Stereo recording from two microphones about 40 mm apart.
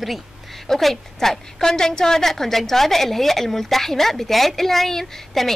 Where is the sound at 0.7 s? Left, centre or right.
Centre.